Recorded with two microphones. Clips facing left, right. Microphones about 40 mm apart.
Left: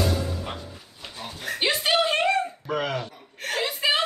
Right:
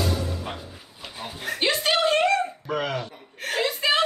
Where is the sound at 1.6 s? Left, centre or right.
Centre.